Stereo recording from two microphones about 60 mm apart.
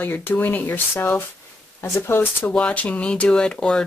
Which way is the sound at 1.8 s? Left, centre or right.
Left.